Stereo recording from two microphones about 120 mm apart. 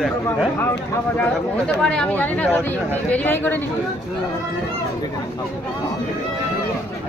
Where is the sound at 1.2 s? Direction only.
10° left (ahead or behind).